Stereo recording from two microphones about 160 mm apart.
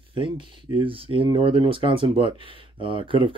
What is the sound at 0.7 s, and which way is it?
Speech, 35° right (ahead or behind).